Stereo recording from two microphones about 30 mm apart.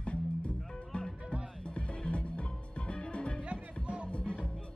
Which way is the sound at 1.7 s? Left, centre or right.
Left.